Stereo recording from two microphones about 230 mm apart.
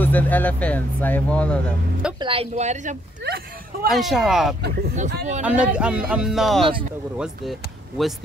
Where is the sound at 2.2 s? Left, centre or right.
Right.